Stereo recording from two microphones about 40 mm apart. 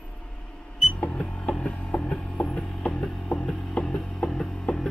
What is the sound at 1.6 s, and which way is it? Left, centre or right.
Music, left.